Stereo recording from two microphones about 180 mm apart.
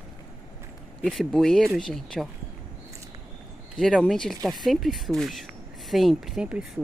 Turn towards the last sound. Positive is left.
turn(degrees=-5)  # may be behind; listen again after turning